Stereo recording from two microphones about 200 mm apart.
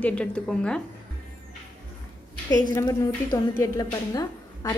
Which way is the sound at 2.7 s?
20° left (ahead or behind).